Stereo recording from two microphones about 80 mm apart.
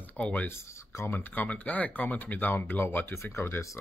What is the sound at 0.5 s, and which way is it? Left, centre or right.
Speech, left.